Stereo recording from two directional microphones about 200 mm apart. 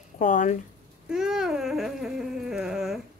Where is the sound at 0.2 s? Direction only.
40° left (ahead or behind).